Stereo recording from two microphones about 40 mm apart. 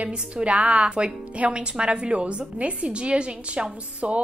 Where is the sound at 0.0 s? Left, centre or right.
Right.